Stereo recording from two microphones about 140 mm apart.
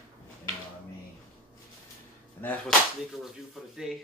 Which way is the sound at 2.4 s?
10° left (ahead or behind).